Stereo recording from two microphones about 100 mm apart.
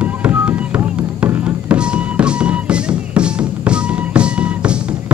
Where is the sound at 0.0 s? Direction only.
10° right (ahead or behind).